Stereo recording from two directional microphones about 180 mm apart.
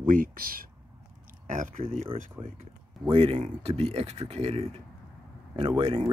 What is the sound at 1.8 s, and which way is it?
Speech, 30° right (ahead or behind).